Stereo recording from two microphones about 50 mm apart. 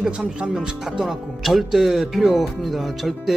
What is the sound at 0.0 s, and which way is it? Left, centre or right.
Speech, centre.